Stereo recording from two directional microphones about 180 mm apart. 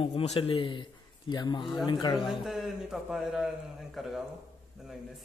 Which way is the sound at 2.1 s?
Centre (ahead or behind).